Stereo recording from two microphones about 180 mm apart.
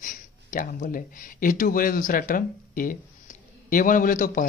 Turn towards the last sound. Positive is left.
turn(degrees=50)  # may be behind; listen again after turning